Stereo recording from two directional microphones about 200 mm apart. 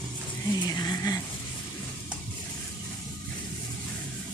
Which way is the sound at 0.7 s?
20° left (ahead or behind).